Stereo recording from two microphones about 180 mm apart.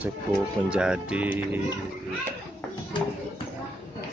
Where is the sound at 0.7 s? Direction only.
5° right (ahead or behind).